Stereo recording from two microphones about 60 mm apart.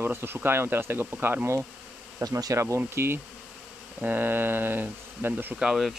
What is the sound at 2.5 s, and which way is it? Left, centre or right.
Speech, right.